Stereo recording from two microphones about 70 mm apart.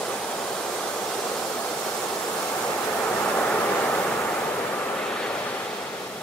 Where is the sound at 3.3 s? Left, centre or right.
Centre.